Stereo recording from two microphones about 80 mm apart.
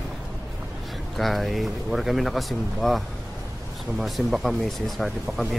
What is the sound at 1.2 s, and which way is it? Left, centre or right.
Speech, centre.